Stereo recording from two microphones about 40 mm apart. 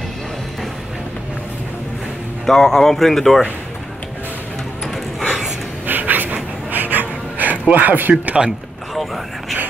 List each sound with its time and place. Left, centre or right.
2.4 s speech: centre
4.9 s dog: centre
5.9 s pant: right
8.4 s speech: centre